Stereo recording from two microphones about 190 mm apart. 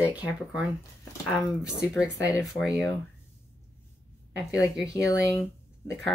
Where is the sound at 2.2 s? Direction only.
15° left (ahead or behind).